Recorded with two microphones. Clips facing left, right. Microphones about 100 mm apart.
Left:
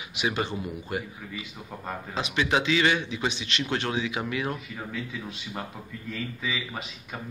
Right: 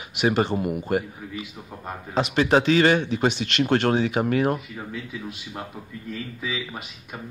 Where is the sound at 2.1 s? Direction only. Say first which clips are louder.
Right 7 dB; 40° right (ahead or behind).